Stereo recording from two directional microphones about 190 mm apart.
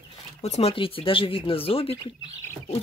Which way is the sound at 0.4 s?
35° left (ahead or behind).